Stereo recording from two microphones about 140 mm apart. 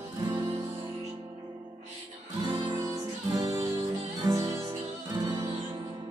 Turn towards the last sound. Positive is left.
turn(degrees=-25)  # may be behind; listen again after turning